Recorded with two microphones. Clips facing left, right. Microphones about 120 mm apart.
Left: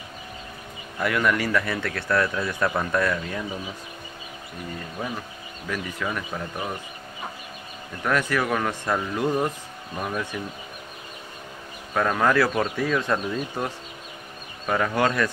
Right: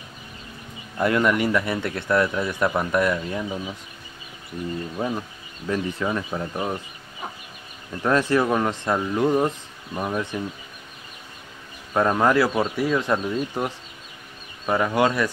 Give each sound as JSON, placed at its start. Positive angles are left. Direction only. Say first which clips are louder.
{"t": 0.9, "sound": "speech", "louder": "right 3 dB", "side_deg": -25}
{"t": 5.7, "sound": "speech", "louder": "right 5 dB", "side_deg": -25}
{"t": 8.0, "sound": "speech", "louder": "right 4 dB", "side_deg": -25}
{"t": 11.9, "sound": "speech", "louder": "right 2 dB", "side_deg": -20}